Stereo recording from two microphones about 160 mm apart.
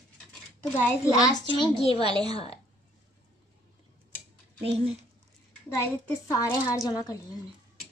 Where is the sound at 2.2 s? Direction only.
40° left (ahead or behind).